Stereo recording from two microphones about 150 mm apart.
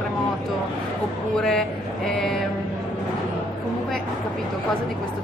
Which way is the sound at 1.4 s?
5° left (ahead or behind).